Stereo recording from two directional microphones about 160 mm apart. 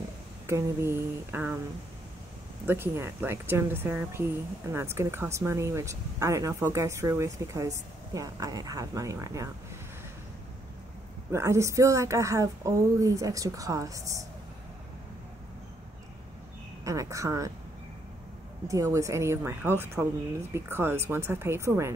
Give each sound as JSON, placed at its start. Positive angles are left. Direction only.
{"t": 0.5, "sound": "speech", "side_deg": -15}
{"t": 2.6, "sound": "speech", "side_deg": -15}
{"t": 11.3, "sound": "speech", "side_deg": -20}
{"t": 16.8, "sound": "speech", "side_deg": -20}
{"t": 18.7, "sound": "speech", "side_deg": -20}